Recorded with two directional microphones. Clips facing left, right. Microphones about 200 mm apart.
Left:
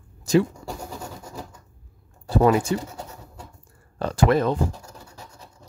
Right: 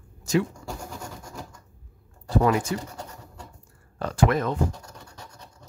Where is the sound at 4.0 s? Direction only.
30° left (ahead or behind).